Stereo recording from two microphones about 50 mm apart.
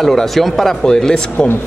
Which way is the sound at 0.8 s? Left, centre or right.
Centre.